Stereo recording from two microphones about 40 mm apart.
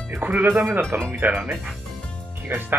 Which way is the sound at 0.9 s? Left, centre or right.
Right.